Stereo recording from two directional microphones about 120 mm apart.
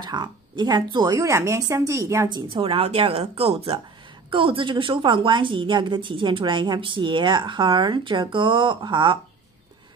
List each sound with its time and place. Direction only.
0.0 s a woman's voice: 40° right (ahead or behind)
2.2 s a woman's voice: 40° right (ahead or behind)